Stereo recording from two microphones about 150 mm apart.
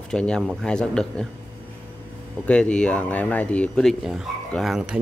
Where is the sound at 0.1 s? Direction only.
5° left (ahead or behind).